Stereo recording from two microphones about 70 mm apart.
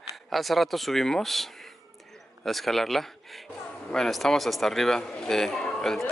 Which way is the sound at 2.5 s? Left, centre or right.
Centre.